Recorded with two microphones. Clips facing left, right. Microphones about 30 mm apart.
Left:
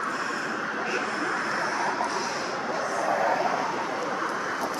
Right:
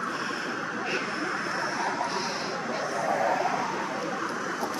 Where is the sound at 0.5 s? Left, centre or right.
Centre.